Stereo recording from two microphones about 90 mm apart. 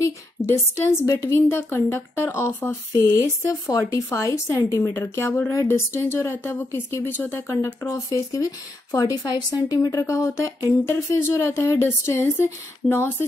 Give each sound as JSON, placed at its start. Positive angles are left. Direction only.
{"t": 0.0, "sound": "a woman's voice", "side_deg": 30}
{"t": 3.2, "sound": "a woman's voice", "side_deg": 40}